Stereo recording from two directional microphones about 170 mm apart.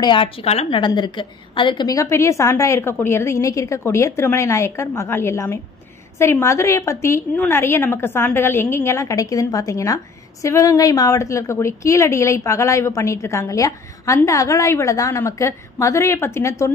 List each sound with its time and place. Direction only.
0.0 s a woman's voice: 30° left (ahead or behind)